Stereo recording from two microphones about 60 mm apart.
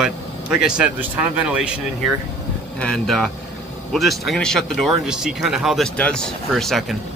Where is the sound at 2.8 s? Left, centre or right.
Centre.